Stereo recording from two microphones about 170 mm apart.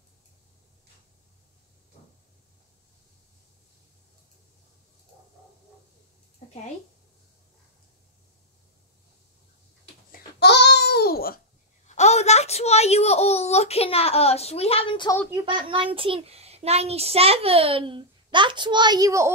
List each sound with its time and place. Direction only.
10.4 s babbling: 85° left; by 11.4 s 65° left (ahead or behind)
11.9 s a sound: 40° left (ahead or behind)
15.3 s a child's voice: 30° right (ahead or behind)